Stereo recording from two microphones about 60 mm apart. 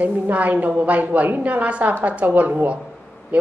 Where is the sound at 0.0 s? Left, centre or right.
Right.